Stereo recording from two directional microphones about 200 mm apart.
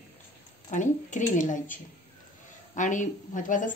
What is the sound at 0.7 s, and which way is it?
A woman's voice, 40° left (ahead or behind).